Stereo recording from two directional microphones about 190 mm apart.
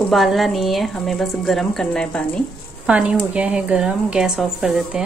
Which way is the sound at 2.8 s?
5° right (ahead or behind).